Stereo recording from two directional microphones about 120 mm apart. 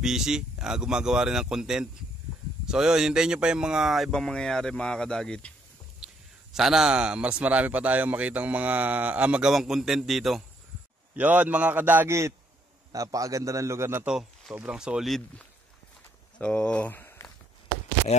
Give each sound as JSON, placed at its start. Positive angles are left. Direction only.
{"t": 0.0, "sound": "speech", "side_deg": -5}
{"t": 6.5, "sound": "speech", "side_deg": -5}
{"t": 11.1, "sound": "a man's voice", "side_deg": -15}
{"t": 14.0, "sound": "speech", "side_deg": -5}